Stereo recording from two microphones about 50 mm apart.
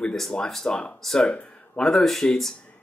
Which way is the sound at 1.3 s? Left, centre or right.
Left.